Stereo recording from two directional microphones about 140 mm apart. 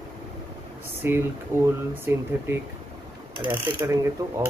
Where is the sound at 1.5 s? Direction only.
20° right (ahead or behind).